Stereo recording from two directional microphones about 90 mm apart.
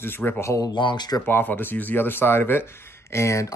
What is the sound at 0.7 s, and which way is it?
Speech, 55° left (ahead or behind).